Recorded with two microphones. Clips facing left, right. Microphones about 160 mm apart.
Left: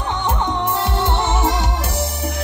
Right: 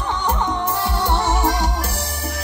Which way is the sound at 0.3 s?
20° left (ahead or behind).